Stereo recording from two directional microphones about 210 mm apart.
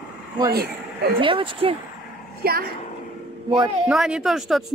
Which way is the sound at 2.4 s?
45° right (ahead or behind).